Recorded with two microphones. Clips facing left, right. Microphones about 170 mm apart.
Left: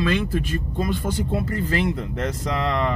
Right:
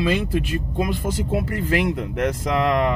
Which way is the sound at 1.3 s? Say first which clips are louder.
Right 4 dB; 10° right (ahead or behind).